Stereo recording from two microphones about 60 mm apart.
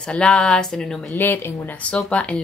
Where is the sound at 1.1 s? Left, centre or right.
Left.